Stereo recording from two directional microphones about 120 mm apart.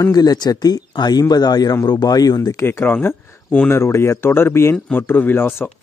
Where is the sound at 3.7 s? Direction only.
20° left (ahead or behind).